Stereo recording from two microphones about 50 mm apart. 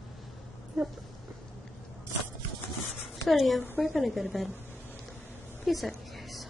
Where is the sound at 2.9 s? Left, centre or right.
Centre.